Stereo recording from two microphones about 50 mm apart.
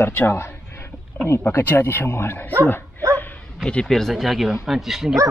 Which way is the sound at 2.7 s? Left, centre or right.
Left.